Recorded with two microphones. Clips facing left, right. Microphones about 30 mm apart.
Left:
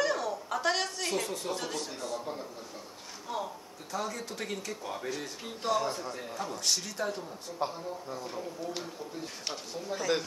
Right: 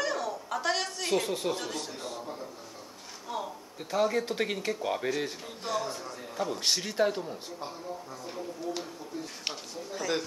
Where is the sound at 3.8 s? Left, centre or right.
Right.